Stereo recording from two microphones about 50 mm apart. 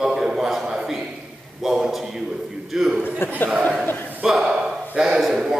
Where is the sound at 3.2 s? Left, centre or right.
Left.